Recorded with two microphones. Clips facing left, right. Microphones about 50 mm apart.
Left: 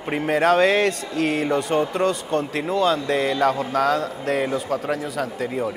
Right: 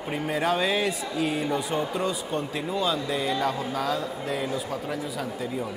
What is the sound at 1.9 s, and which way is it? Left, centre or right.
A man's voice, left.